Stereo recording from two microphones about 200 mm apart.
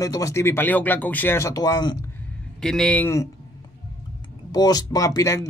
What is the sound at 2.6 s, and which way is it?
Speech, 5° left (ahead or behind).